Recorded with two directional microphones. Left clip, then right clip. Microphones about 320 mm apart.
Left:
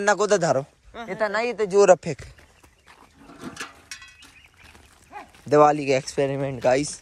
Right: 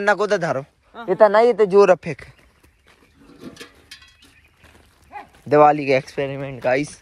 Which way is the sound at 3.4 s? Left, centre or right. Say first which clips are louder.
Left 3 dB; centre.